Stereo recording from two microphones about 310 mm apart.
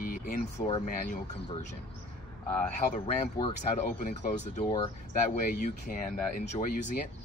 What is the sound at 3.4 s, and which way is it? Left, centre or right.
Speech, left.